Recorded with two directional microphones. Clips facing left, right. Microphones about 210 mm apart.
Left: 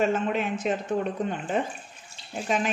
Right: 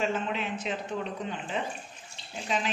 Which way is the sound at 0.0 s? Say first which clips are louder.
Left 5 dB; 50° left (ahead or behind).